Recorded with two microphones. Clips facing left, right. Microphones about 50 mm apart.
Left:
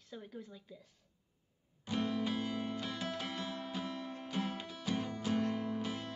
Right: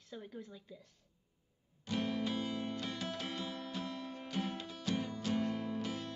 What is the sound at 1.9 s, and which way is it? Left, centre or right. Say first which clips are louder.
Music: left 1 dB; left.